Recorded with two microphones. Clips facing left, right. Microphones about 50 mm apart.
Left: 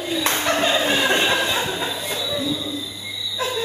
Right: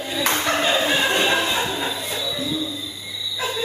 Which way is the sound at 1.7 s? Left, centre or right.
Centre.